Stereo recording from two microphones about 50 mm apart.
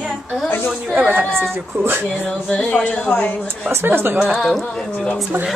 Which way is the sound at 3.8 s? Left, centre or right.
Right.